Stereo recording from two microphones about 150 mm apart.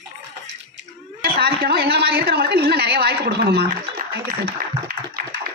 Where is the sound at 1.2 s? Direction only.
90° right.